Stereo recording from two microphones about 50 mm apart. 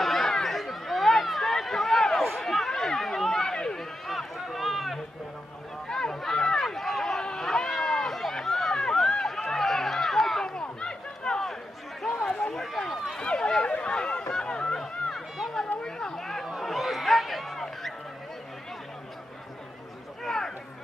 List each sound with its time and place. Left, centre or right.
0.0 s chatter: centre
4.1 s run: centre
5.9 s run: centre
10.5 s a sound: centre
12.1 s chatter: centre
12.5 s run: centre
13.2 s a sound: centre
16.2 s chatter: centre
20.2 s a sound: centre